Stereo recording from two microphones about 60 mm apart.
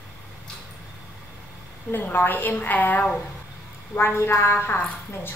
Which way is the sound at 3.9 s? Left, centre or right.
Left.